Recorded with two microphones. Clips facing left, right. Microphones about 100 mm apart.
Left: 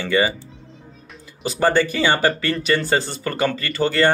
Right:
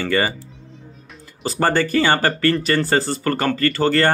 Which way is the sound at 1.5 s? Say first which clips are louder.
Left 1 dB; 45° right (ahead or behind).